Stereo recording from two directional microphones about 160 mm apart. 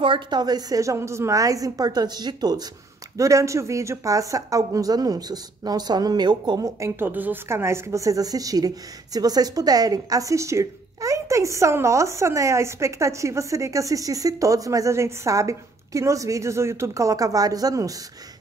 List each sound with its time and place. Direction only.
0.0 s speech: 30° right (ahead or behind)